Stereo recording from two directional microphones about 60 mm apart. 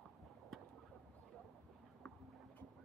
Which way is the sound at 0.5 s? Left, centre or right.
Centre.